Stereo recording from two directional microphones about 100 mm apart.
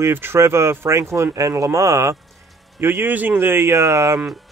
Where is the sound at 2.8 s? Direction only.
20° right (ahead or behind).